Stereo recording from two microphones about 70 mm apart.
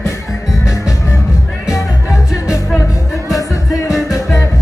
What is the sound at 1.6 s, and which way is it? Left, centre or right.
Music, left.